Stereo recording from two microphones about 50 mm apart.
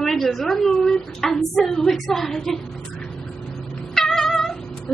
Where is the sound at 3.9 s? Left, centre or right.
Centre.